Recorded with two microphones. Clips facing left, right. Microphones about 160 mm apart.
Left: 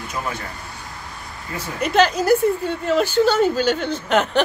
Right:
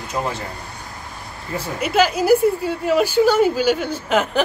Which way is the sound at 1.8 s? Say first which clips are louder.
Left 1 dB; 5° right (ahead or behind).